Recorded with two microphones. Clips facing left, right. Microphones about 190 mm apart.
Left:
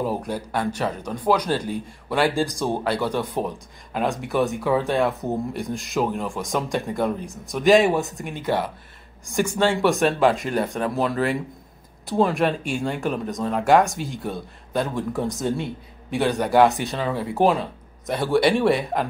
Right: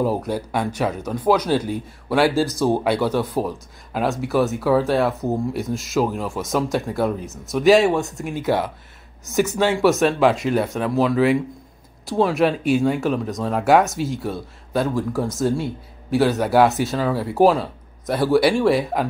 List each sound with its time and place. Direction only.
0.3 s speech: 10° right (ahead or behind)